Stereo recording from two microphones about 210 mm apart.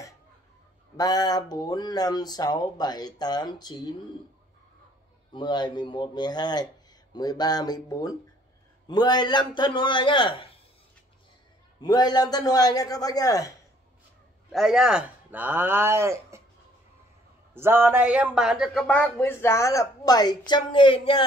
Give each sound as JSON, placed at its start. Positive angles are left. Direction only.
{"t": 0.9, "sound": "speech", "side_deg": 20}
{"t": 5.3, "sound": "speech", "side_deg": 20}
{"t": 11.8, "sound": "speech", "side_deg": 20}
{"t": 14.5, "sound": "speech", "side_deg": 0}
{"t": 17.6, "sound": "speech", "side_deg": -10}